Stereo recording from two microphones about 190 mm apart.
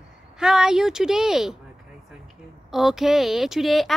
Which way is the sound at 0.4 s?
5° right (ahead or behind).